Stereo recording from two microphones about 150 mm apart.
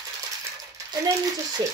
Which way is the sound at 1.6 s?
25° right (ahead or behind).